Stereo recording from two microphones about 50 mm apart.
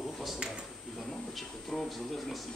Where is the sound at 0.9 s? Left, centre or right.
Centre.